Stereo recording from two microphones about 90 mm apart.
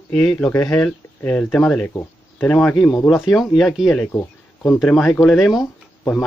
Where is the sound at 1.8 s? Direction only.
20° left (ahead or behind); by 4.1 s centre (ahead or behind).